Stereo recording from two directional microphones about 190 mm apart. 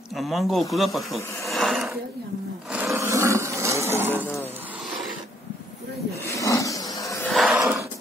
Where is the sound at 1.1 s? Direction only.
15° left (ahead or behind).